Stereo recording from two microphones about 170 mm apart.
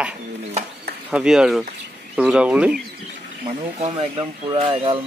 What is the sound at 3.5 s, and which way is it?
Speech, 35° right (ahead or behind).